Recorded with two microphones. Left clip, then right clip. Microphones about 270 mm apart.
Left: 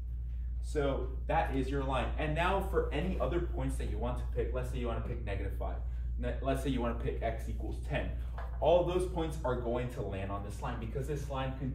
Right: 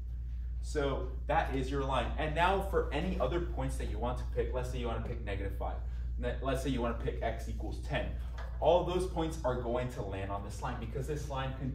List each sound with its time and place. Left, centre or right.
0.7 s a man's voice: centre